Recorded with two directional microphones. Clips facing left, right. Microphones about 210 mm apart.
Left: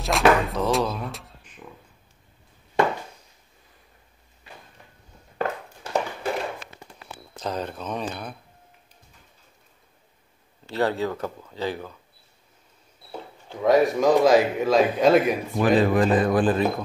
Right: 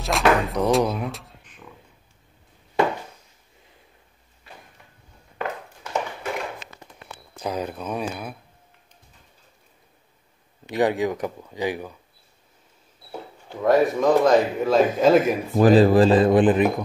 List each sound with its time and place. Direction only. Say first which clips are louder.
0.0 s speech: left 1 dB; centre (ahead or behind)
1.1 s a sound: right 1 dB; centre (ahead or behind)
7.3 s speech: right 2 dB; 10° right (ahead or behind)
10.7 s speech: right 3 dB; 15° right (ahead or behind)
13.1 s speech: right 1 dB; 5° right (ahead or behind)
15.5 s speech: right 6 dB; 40° right (ahead or behind); by 16.8 s 15° right (ahead or behind)